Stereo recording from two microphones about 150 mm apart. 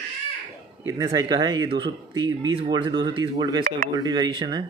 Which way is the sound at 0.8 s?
25° right (ahead or behind).